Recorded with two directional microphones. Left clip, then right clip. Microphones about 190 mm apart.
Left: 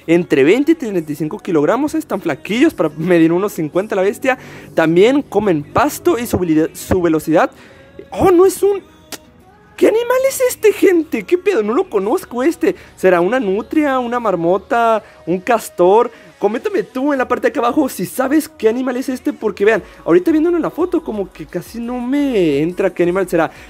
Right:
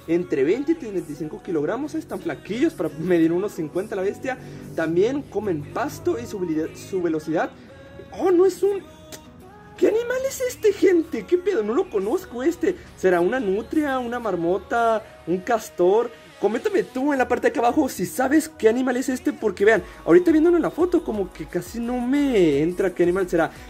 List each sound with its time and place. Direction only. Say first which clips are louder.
0.0 s speech: left 9 dB; 40° left (ahead or behind); by 23.5 s 25° left (ahead or behind)